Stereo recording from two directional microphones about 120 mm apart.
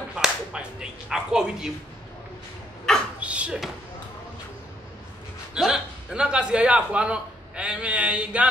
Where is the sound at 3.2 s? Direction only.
10° right (ahead or behind).